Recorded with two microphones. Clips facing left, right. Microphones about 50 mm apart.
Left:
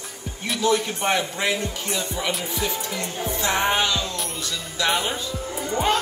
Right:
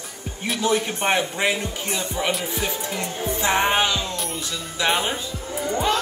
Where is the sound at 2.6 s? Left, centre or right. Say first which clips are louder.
Right 1 dB; right.